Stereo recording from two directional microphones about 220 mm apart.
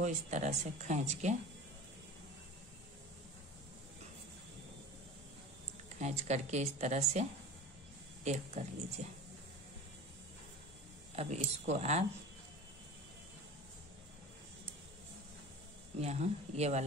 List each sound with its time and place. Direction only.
0.0 s speech: 35° right (ahead or behind)
5.9 s speech: 30° right (ahead or behind)
11.1 s speech: 30° right (ahead or behind)
16.0 s speech: 30° right (ahead or behind)